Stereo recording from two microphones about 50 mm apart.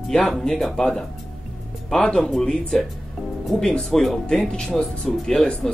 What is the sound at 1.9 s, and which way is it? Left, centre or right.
Speech, centre.